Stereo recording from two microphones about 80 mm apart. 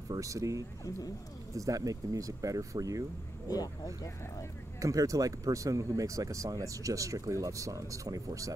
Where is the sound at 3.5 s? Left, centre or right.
Left.